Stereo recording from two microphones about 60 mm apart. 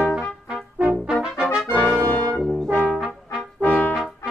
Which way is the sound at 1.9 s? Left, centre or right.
Left.